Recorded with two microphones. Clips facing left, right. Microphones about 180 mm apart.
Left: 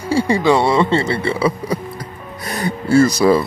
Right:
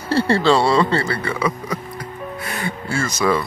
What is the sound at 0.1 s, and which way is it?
Speech, 15° left (ahead or behind).